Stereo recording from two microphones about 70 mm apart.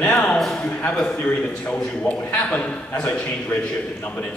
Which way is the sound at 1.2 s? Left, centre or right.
Left.